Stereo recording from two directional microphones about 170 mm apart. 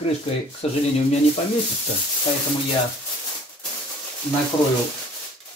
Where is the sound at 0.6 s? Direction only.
40° left (ahead or behind).